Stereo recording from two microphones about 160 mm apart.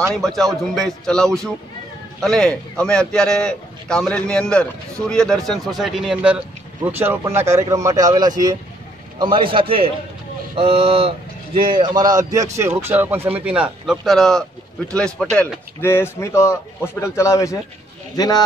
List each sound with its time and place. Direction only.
0.1 s a man's voice: centre (ahead or behind); by 18.4 s 25° left (ahead or behind)